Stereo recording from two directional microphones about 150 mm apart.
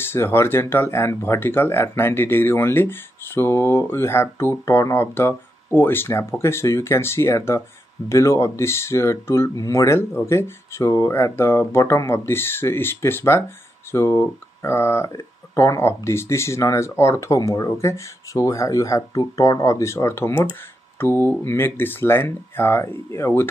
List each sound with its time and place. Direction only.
0.0 s speech: 15° left (ahead or behind)